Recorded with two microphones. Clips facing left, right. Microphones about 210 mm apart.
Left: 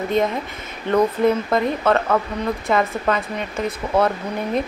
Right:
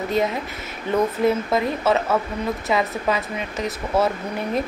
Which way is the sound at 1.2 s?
5° right (ahead or behind).